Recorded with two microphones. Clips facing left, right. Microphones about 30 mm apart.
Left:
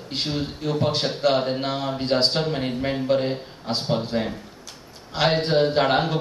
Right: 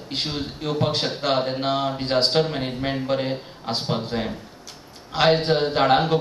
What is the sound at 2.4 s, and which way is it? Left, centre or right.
A man's voice, centre.